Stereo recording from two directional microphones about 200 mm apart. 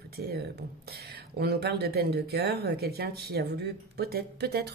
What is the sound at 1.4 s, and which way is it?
Speech, 55° right (ahead or behind).